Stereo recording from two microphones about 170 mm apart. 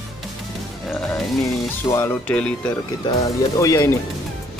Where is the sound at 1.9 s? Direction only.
10° left (ahead or behind).